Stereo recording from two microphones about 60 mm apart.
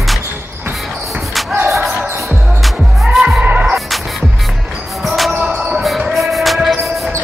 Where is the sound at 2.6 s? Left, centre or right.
Centre.